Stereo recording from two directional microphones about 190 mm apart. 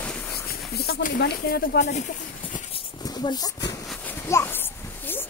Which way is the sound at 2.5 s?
20° left (ahead or behind).